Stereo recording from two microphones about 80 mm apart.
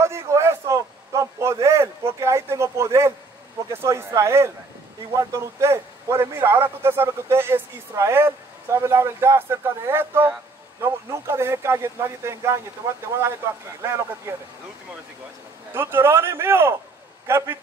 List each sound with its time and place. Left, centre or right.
0.0 s a sound: right
3.7 s a man's voice: right
13.8 s a man's voice: right
15.7 s a man's voice: right